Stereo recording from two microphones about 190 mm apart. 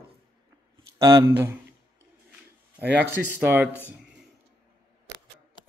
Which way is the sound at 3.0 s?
10° right (ahead or behind).